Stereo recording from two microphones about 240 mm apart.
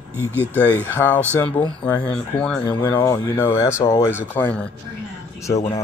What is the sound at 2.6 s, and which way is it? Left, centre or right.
Speech, centre.